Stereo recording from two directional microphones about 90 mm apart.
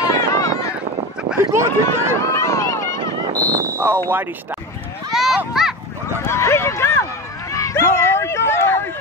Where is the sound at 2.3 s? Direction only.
35° left (ahead or behind).